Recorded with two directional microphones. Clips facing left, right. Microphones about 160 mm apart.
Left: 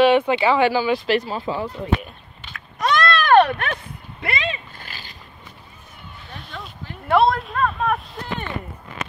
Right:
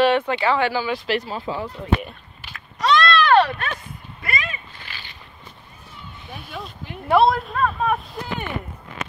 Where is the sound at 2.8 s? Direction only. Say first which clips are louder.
Right 2 dB; 50° left (ahead or behind).